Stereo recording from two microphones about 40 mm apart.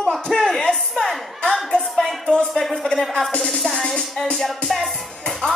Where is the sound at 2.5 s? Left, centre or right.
Centre.